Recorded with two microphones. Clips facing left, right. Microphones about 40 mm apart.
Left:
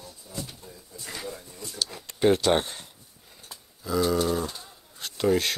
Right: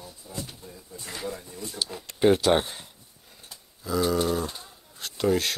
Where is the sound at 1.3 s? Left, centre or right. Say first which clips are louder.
Right 3 dB; centre.